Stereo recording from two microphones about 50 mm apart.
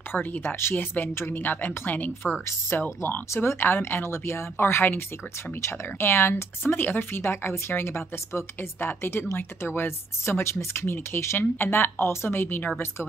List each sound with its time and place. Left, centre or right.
0.1 s a woman's voice: left
1.1 s speech: left
1.4 s a woman's voice: left
3.4 s speech: left
8.7 s speech: left
11.3 s speech: left